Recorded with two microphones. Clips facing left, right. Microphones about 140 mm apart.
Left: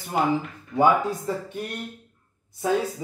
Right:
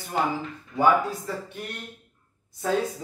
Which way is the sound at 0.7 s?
20° left (ahead or behind).